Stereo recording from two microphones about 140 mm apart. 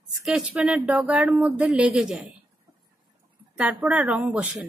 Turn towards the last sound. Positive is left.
turn(degrees=-5)  # may be behind; listen again after turning